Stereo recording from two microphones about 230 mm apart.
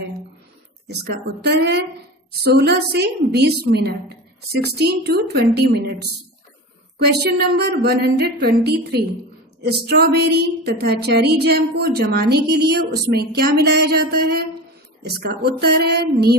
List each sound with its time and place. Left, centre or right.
0.8 s a woman's voice: right